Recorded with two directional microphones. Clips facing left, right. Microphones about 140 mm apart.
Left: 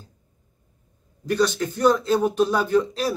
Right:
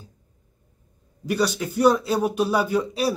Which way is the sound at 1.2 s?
10° right (ahead or behind).